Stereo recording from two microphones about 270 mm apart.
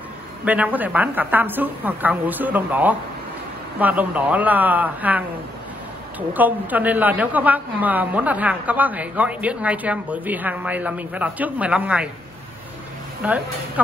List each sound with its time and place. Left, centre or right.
0.5 s a woman's voice: centre
13.2 s a woman's voice: centre